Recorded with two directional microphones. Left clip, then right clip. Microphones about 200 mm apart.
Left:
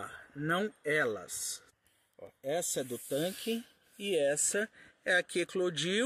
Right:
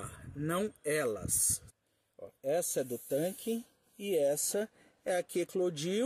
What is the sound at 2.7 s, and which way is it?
Speech, 5° right (ahead or behind).